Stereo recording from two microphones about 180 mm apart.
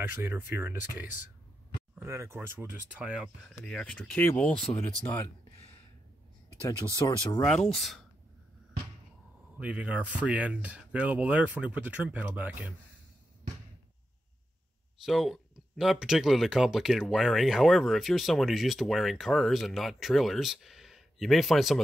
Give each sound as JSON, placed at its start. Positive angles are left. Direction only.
{"t": 0.2, "sound": "speech", "side_deg": -10}
{"t": 7.1, "sound": "speech", "side_deg": 20}
{"t": 7.4, "sound": "speech", "side_deg": 0}
{"t": 9.6, "sound": "speech", "side_deg": -5}
{"t": 15.0, "sound": "speech", "side_deg": 0}